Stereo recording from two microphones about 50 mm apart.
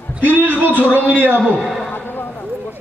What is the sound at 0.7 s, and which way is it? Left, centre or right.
Speech, left.